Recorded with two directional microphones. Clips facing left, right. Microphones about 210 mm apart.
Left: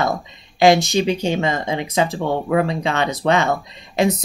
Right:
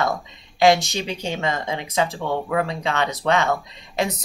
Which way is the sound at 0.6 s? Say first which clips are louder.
Left 4 dB; 15° left (ahead or behind).